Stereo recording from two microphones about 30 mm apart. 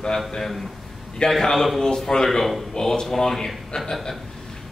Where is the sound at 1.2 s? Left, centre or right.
Left.